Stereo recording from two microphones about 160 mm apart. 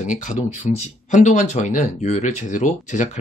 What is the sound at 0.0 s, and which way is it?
Speech, 50° left (ahead or behind).